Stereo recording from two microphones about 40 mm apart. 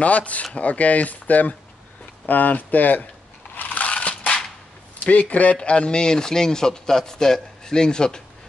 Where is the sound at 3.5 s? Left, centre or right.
Left.